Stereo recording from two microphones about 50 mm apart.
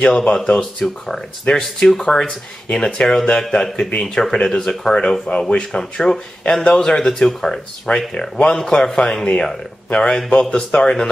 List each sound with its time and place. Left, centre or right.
0.0 s a man's voice: centre